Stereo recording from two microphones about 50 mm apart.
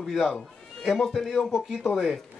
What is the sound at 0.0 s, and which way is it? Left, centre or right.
Speech, centre.